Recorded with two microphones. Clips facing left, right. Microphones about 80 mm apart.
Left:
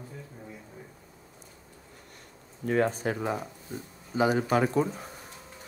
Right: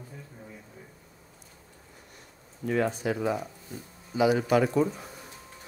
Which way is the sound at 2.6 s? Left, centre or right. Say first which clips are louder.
Left 1 dB; left.